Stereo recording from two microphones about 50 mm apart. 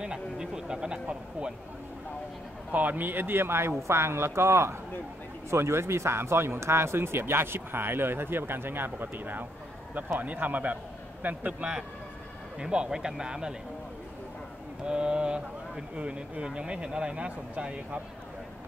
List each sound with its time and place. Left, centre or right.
0.0 s a sound: centre
2.7 s a man's voice: right
11.6 s speech: right
14.9 s speech: centre